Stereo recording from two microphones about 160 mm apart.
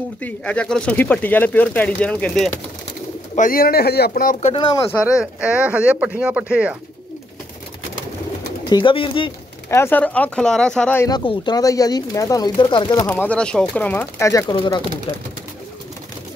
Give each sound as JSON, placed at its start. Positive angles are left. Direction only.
{"t": 0.2, "sound": "speech", "side_deg": 5}
{"t": 3.3, "sound": "speech", "side_deg": 60}
{"t": 4.6, "sound": "speech", "side_deg": 30}
{"t": 5.0, "sound": "speech", "side_deg": -5}
{"t": 8.6, "sound": "speech", "side_deg": 30}
{"t": 9.7, "sound": "speech", "side_deg": 15}
{"t": 11.0, "sound": "speech", "side_deg": 25}
{"t": 13.1, "sound": "speech", "side_deg": 5}